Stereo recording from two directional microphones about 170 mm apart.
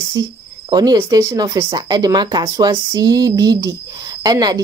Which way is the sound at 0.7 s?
25° right (ahead or behind).